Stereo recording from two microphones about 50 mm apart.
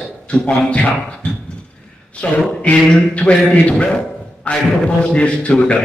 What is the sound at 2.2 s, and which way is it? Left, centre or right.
A man's voice, left.